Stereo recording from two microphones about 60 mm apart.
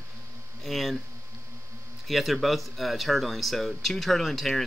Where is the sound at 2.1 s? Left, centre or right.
Centre.